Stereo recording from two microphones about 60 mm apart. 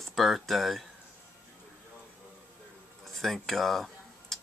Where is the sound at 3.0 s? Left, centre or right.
Centre.